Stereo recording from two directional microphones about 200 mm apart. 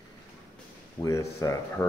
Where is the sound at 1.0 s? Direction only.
15° left (ahead or behind).